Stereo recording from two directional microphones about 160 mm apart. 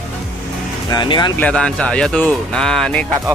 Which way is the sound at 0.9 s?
30° left (ahead or behind).